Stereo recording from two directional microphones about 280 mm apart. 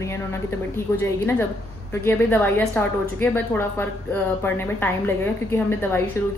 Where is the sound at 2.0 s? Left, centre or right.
Centre.